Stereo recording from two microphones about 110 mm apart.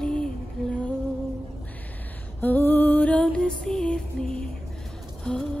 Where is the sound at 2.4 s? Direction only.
15° left (ahead or behind).